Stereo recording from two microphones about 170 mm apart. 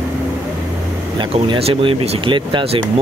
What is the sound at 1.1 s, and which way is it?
Speech, 30° right (ahead or behind).